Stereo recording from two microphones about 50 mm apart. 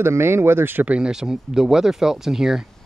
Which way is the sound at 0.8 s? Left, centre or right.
Right.